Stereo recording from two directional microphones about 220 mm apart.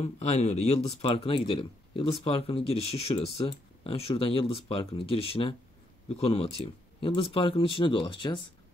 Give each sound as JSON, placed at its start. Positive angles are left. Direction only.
{"t": 0.0, "sound": "speech", "side_deg": 30}